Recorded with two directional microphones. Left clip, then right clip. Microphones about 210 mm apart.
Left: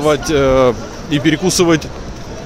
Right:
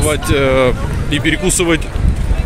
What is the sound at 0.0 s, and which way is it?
Speech, 15° left (ahead or behind).